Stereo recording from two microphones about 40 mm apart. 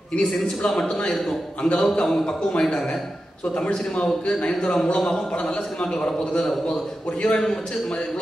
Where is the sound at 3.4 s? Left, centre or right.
Left; by 7.6 s centre.